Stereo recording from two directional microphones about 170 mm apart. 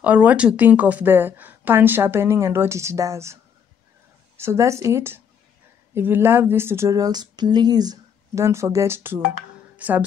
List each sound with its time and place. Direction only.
0.0 s a woman's voice: 10° right (ahead or behind)
4.4 s a woman's voice: 15° right (ahead or behind)